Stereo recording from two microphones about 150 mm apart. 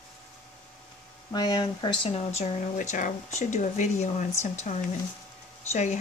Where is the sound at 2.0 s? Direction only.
45° left (ahead or behind).